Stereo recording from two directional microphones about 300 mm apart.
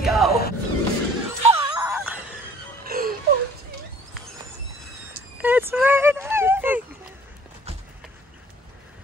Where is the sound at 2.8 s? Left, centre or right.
Right.